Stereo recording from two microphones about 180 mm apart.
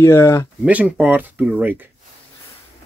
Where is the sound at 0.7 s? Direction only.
5° right (ahead or behind).